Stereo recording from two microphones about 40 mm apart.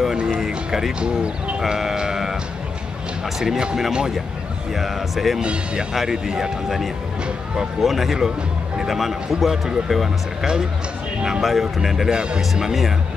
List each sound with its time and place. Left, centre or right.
0.3 s a man's voice: centre
1.0 s speech: right
2.0 s music: centre
3.3 s a man's voice: centre
4.7 s a man's voice: centre
5.4 s speech: right
5.9 s a man's voice: centre
7.8 s speech: centre
10.4 s speech: centre
11.4 s a man's voice: centre
12.1 s speech: right
12.5 s a man's voice: centre